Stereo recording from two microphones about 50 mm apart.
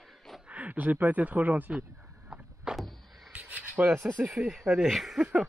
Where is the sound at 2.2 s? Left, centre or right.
Centre.